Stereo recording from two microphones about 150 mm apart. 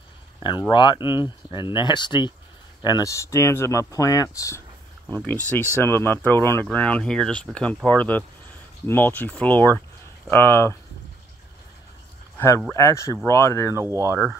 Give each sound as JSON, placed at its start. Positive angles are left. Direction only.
{"t": 0.4, "sound": "speech", "side_deg": 30}
{"t": 5.8, "sound": "speech", "side_deg": 15}
{"t": 12.4, "sound": "speech", "side_deg": 15}
{"t": 13.7, "sound": "speech", "side_deg": -20}